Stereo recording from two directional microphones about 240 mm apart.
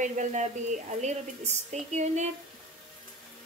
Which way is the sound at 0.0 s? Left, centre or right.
Right.